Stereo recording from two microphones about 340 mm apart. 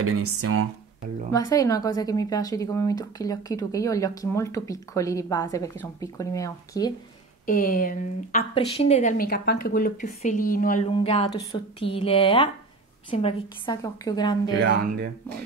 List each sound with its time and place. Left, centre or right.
0.0 s speech: right
1.3 s speech: centre
7.4 s speech: left